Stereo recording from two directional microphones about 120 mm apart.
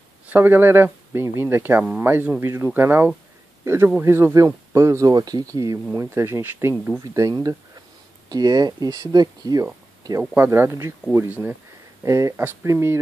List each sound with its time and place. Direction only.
0.3 s speech: 15° right (ahead or behind); by 9.7 s 35° right (ahead or behind)
10.3 s speech: 20° right (ahead or behind)